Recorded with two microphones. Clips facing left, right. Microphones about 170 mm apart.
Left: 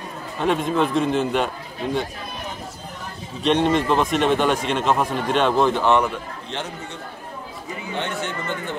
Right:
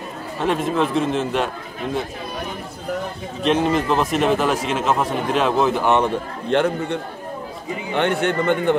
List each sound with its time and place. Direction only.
0.4 s a man's voice: centre (ahead or behind)
3.4 s a man's voice: centre (ahead or behind)
6.5 s a man's voice: 55° right (ahead or behind)